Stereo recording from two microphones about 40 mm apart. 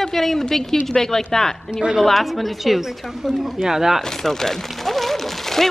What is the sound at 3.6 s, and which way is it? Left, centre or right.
Speech, centre.